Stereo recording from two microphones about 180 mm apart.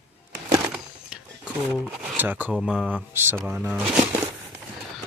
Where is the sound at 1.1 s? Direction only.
5° right (ahead or behind).